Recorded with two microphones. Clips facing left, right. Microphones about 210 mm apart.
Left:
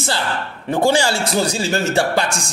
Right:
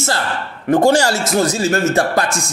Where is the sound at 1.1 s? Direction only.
30° left (ahead or behind).